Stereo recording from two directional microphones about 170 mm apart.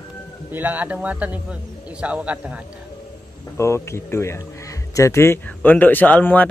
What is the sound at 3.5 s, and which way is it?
A man's voice, 15° left (ahead or behind).